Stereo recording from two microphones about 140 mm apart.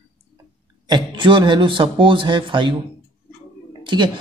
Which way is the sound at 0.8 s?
35° right (ahead or behind).